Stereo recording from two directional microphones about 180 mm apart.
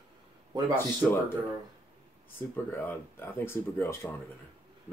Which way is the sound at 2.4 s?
10° left (ahead or behind).